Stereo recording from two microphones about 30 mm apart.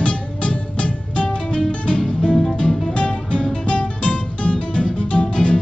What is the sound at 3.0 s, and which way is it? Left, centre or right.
Guitar, left.